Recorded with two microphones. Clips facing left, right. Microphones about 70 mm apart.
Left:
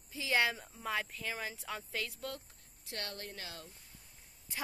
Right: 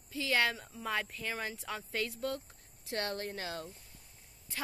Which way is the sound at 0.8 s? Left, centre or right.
Centre.